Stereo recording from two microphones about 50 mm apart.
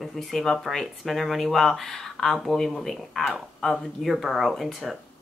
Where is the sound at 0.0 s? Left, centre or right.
Centre.